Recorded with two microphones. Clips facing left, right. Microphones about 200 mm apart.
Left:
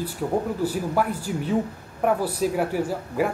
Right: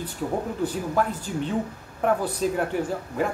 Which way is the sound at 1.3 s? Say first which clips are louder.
Left 2 dB; 5° left (ahead or behind).